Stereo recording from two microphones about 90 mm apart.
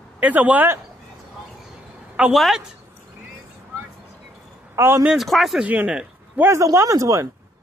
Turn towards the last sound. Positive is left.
turn(degrees=-35)  # may be behind; listen again after turning